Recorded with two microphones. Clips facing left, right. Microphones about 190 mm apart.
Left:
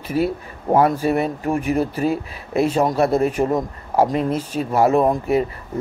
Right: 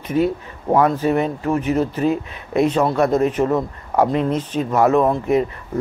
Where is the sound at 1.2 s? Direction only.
10° left (ahead or behind).